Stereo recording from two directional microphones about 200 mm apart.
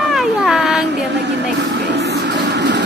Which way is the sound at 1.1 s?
60° right (ahead or behind).